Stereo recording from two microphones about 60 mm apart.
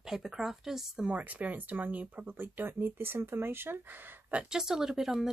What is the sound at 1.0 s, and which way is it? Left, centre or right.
Speech, right.